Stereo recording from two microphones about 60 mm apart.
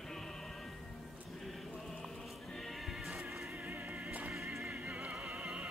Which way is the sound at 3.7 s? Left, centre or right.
Right.